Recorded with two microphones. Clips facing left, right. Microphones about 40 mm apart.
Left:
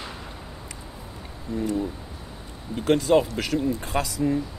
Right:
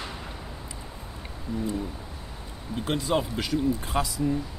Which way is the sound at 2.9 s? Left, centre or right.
Left.